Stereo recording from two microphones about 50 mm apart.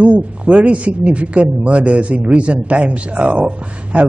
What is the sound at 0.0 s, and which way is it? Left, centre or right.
Speech, right.